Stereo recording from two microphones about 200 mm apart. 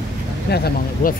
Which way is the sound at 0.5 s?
50° left (ahead or behind).